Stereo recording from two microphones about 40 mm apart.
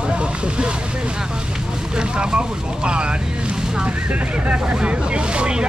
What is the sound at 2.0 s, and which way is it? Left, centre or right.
Speech, right.